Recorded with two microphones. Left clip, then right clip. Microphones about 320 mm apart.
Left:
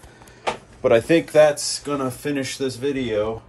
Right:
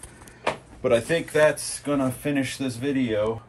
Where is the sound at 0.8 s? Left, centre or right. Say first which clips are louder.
Left 5 dB; left.